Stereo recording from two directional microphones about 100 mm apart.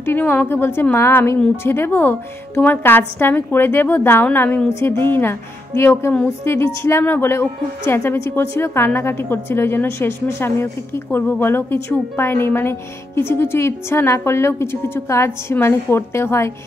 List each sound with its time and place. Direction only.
0.0 s a woman's voice: 20° left (ahead or behind)